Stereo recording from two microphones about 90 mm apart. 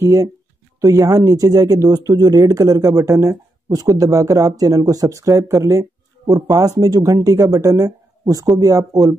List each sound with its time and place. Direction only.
0.0 s speech: 35° right (ahead or behind)